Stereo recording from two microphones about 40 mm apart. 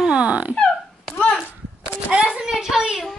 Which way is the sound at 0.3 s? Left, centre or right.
Right.